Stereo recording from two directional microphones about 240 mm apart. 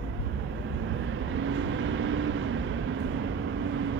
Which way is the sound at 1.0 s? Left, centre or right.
Right.